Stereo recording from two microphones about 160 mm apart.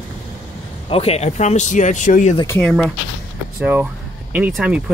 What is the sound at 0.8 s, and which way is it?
Speech, 40° left (ahead or behind).